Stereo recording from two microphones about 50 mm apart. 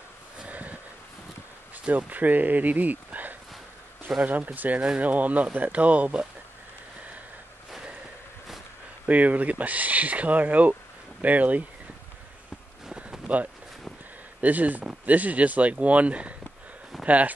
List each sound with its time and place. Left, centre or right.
0.5 s a sound: right
1.9 s speech: right
9.0 s speech: right
13.3 s speech: right
14.4 s speech: right